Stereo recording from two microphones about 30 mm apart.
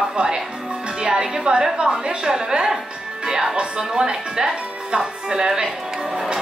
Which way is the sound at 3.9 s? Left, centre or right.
Right.